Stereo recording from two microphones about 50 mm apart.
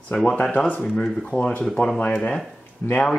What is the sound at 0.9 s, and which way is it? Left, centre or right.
Speech, centre.